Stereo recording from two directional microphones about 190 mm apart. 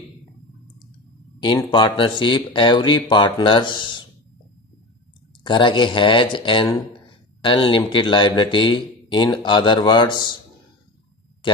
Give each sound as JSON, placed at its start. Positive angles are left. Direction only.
{"t": 1.4, "sound": "speech", "side_deg": 25}
{"t": 5.4, "sound": "speech", "side_deg": 25}
{"t": 11.4, "sound": "speech", "side_deg": 25}